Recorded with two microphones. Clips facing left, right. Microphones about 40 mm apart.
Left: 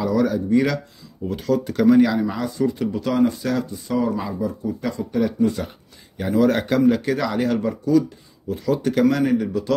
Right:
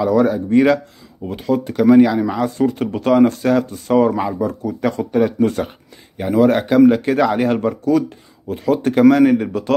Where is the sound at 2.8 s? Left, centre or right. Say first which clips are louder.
Right 9 dB; right.